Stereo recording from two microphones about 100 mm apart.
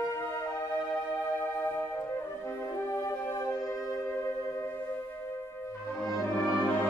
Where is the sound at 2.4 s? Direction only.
30° left (ahead or behind).